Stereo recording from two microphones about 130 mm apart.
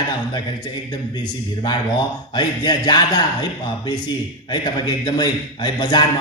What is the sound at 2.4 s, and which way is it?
A man's voice, 35° left (ahead or behind).